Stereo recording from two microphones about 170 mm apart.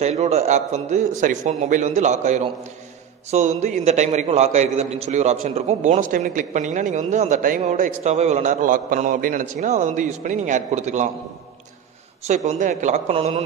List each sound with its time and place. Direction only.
0.0 s a man's voice: 40° right (ahead or behind)
12.3 s speech: 45° right (ahead or behind)